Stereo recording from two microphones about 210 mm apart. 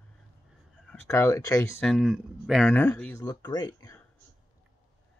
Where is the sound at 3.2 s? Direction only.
20° left (ahead or behind).